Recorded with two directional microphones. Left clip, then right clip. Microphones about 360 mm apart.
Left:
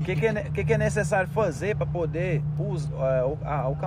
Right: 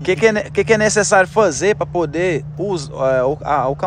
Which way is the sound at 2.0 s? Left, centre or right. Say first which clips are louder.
Right 11 dB; right.